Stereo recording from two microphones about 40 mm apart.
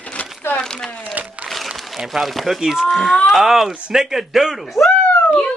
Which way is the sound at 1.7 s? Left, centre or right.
Centre.